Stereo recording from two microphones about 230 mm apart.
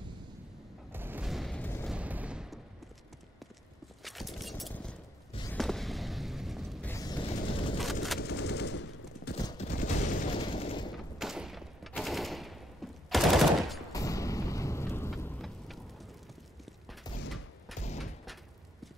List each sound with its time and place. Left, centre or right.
0.9 s a sound: centre
1.9 s gunshot: centre
4.0 s a sound: centre
5.5 s fireworks: centre
6.9 s music: centre
7.8 s a sound: centre
8.2 s machine gun: left
9.4 s fusillade: centre
9.7 s fusillade: left
11.1 s machine gun: centre
13.9 s a sound: centre
17.7 s thump: left